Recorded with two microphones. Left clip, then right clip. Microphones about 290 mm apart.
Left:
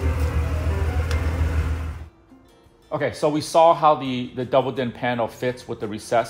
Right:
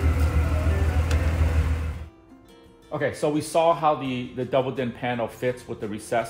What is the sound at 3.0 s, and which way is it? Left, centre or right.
A man's voice, left.